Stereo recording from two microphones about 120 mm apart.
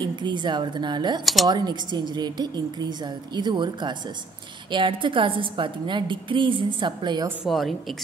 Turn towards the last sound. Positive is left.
turn(degrees=0)  # may be behind; listen again after turning